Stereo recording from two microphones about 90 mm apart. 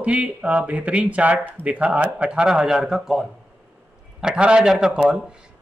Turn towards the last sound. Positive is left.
turn(degrees=-5)  # may be behind; listen again after turning